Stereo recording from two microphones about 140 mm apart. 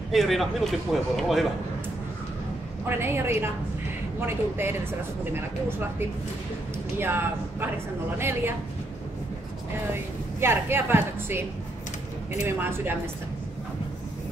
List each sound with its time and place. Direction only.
0.1 s speech: centre (ahead or behind)
2.9 s a woman's voice: 15° right (ahead or behind)
10.4 s a woman's voice: 15° right (ahead or behind)
12.4 s a woman's voice: 15° right (ahead or behind)